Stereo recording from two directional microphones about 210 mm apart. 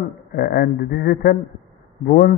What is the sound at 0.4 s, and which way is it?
A man's voice, 45° left (ahead or behind).